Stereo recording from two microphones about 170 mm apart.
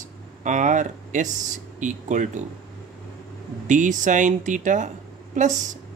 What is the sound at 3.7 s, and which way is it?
Speech, 50° right (ahead or behind).